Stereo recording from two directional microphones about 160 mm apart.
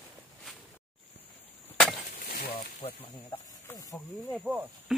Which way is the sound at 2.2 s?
65° left (ahead or behind).